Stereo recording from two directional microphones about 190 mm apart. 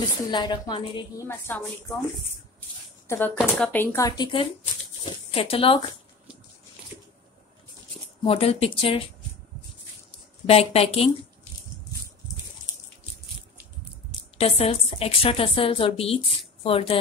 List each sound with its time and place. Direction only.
0.3 s a woman's voice: 25° left (ahead or behind)
1.2 s speech: 10° left (ahead or behind)
3.3 s speech: 5° left (ahead or behind); by 5.8 s 30° left (ahead or behind)
8.2 s speech: 30° left (ahead or behind)
10.4 s speech: 30° left (ahead or behind)
14.4 s a woman's voice: 30° left (ahead or behind)